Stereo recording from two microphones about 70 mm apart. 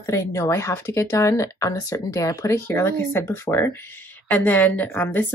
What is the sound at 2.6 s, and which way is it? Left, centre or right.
Speech, left.